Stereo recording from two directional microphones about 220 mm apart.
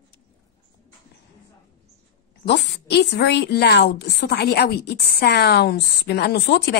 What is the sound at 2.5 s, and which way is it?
A woman's voice, 50° left (ahead or behind).